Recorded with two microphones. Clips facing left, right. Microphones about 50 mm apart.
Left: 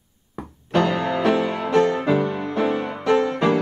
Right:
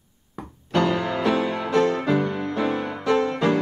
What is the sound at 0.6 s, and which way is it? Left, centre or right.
Music, left.